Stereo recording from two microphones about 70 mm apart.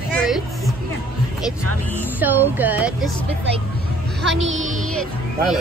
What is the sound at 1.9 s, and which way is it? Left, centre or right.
Speech, right.